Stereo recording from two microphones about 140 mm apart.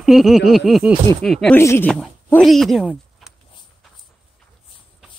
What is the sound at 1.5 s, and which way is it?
Speech, 15° left (ahead or behind).